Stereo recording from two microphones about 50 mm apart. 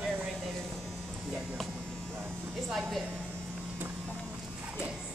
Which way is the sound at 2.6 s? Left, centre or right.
Centre.